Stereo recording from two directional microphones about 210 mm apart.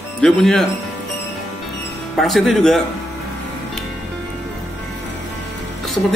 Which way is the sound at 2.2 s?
Centre (ahead or behind).